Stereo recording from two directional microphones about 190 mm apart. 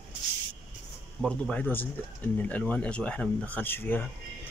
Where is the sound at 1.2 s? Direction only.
5° left (ahead or behind).